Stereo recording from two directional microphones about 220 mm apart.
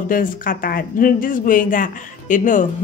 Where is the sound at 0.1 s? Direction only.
40° left (ahead or behind).